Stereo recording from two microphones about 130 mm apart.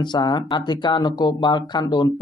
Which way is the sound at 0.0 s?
35° left (ahead or behind).